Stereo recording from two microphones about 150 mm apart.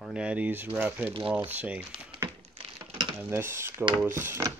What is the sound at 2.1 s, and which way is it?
Typing, 35° right (ahead or behind).